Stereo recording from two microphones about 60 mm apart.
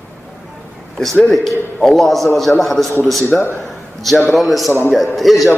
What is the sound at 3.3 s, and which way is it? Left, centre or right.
Speech, centre.